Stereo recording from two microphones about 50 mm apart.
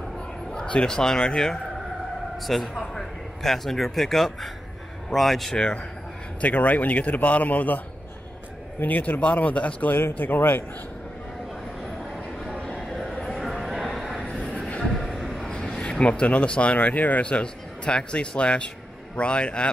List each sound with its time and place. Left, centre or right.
0.5 s a man's voice: centre
2.3 s speech: centre
6.4 s a man's voice: left
8.8 s a man's voice: left
12.7 s music: centre
13.1 s a sound: centre
14.2 s a sound: left
14.8 s vehicle: centre
15.4 s a man's voice: centre